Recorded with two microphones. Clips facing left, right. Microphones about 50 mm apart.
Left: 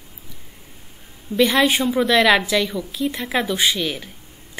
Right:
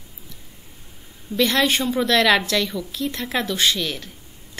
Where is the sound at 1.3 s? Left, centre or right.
Centre.